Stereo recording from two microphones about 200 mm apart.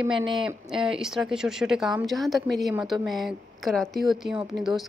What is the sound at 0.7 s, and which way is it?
A woman's voice, centre (ahead or behind).